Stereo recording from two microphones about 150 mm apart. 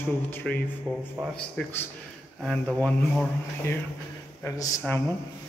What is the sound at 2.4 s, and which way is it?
Speech, 5° left (ahead or behind).